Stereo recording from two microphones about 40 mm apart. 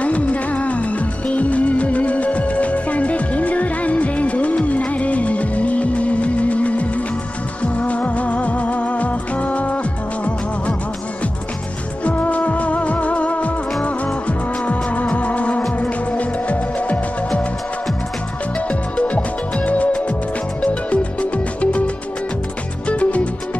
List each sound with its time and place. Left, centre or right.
0.0 s music of bollywood: left
7.6 s music: left
12.0 s music: left
13.8 s music of bollywood: left
15.8 s music: left
18.7 s music: left